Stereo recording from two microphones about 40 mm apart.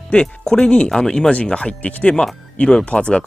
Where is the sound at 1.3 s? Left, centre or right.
Left.